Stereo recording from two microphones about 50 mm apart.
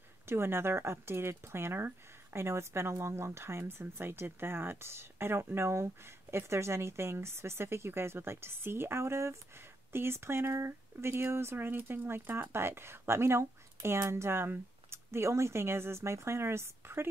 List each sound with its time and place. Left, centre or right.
0.3 s speech: right